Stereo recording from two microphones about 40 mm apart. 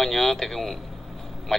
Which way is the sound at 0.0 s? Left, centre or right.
Centre.